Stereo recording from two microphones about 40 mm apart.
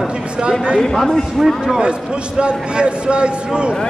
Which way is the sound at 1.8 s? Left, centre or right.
Right.